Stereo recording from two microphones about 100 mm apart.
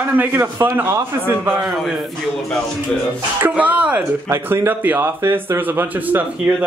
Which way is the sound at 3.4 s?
15° right (ahead or behind).